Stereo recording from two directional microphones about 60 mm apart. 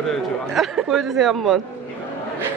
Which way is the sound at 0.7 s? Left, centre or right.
Centre.